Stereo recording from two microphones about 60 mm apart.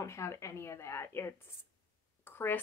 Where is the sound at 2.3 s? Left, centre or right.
Left.